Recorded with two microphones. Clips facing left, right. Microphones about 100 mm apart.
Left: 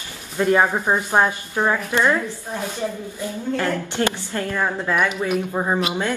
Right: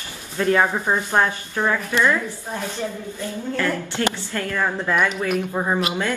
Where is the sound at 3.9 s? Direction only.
20° left (ahead or behind).